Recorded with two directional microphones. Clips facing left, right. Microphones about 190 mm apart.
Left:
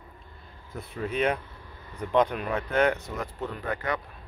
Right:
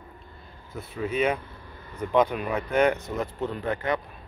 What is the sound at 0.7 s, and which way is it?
Speech, 5° right (ahead or behind).